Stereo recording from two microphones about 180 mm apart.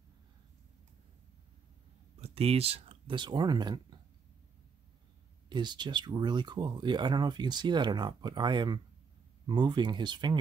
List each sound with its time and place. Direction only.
2.1 s speech: 35° right (ahead or behind)
5.5 s speech: 25° right (ahead or behind)